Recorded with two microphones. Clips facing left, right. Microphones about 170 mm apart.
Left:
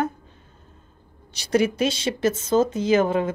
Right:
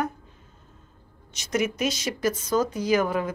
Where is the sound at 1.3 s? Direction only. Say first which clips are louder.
Left 5 dB; 35° left (ahead or behind).